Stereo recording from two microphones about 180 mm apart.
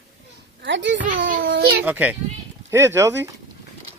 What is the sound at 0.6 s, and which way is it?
Speech, 90° right.